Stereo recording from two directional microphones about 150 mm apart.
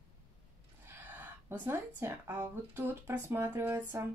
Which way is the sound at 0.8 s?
10° right (ahead or behind).